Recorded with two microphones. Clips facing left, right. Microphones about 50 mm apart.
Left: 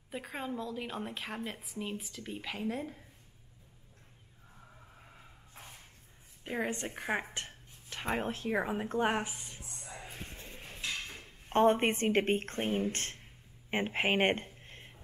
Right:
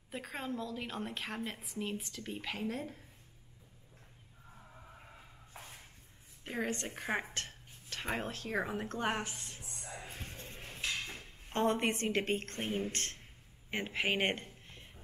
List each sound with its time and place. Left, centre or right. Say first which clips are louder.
0.1 s a woman's voice: left 1 dB; centre
6.4 s a woman's voice: left 2 dB; centre
7.3 s dishes: even; centre
8.3 s a woman's voice: left 4 dB; centre
9.6 s music: even; centre
10.3 s a sound: even; centre
10.6 s a sound: even; centre
11.4 s a woman's voice: left 6 dB; left